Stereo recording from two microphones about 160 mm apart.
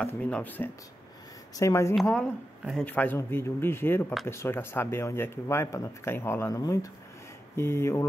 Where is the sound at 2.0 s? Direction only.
5° left (ahead or behind).